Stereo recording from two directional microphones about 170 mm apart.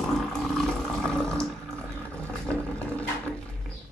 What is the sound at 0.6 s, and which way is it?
Toilet flush, 5° left (ahead or behind).